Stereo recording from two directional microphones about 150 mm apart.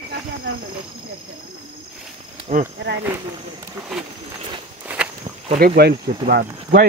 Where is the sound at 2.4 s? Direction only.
55° right (ahead or behind).